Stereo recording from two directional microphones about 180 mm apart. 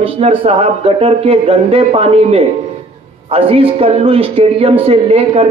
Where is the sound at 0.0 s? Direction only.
30° right (ahead or behind).